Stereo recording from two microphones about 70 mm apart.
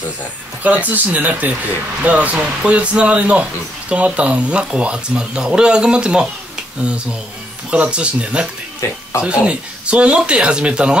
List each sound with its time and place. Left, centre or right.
0.7 s speech: right
8.8 s speech: left
9.2 s speech: centre